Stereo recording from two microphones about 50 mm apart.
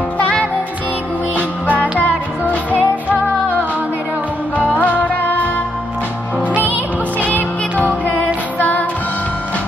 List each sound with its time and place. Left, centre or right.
0.2 s music: left
1.3 s music: right
4.7 s music: left
7.2 s music: left